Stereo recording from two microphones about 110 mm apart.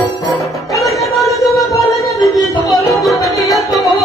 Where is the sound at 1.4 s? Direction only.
30° left (ahead or behind).